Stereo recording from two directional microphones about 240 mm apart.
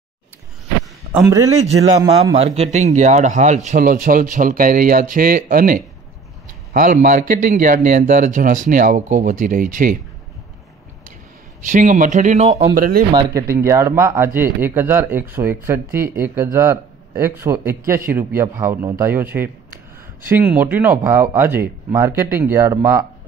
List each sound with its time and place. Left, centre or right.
2.0 s speech: centre
11.6 s speech: right
13.1 s speech: centre